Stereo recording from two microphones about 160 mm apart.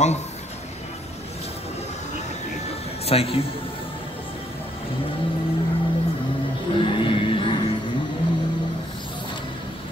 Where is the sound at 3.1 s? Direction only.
40° left (ahead or behind).